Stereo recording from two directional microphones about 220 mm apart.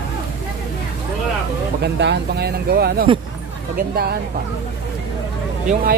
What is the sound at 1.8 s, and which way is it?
Speech, 50° right (ahead or behind).